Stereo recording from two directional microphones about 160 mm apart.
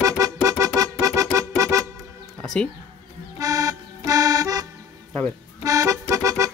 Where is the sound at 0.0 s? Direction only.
20° right (ahead or behind).